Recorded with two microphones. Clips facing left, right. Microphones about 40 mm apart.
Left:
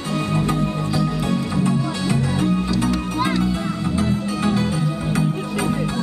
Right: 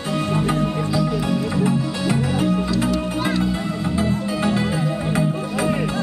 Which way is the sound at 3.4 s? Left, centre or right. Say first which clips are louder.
Even; centre.